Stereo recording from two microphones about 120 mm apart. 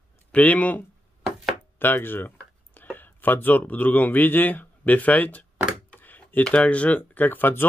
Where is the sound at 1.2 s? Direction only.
Centre (ahead or behind).